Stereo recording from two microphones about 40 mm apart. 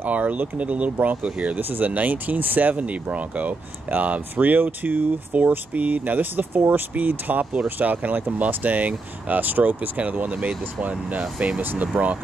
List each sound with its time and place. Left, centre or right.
0.0 s speech: right
1.6 s speech: right
1.9 s speech: right
5.7 s speech: right
6.9 s speech: right